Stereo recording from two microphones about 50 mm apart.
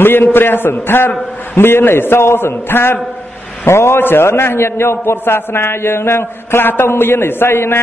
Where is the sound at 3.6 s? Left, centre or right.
Left.